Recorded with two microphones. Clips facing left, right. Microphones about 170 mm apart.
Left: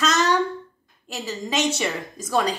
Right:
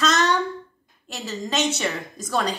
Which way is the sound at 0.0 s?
5° left (ahead or behind).